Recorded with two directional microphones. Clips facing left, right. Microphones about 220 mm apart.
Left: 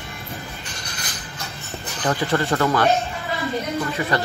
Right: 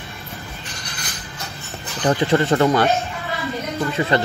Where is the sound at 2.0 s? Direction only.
25° right (ahead or behind).